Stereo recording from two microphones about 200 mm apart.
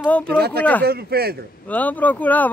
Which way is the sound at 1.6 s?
10° left (ahead or behind).